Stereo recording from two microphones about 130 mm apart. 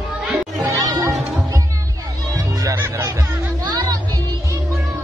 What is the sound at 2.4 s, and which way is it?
Music, 25° right (ahead or behind).